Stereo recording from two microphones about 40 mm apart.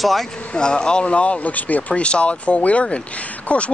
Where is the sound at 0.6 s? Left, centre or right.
Left.